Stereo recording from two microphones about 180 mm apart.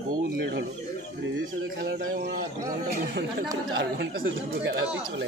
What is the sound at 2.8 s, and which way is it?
Speech, 55° right (ahead or behind).